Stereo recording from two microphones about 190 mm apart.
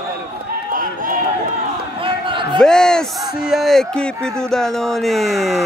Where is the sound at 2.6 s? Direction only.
5° left (ahead or behind).